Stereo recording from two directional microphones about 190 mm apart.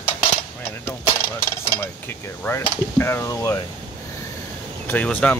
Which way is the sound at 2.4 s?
15° left (ahead or behind).